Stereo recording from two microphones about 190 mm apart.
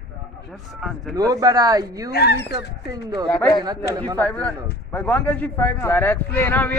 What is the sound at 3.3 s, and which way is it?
A man's voice, 15° left (ahead or behind).